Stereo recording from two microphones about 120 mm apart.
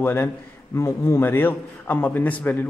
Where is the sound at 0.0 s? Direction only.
20° left (ahead or behind).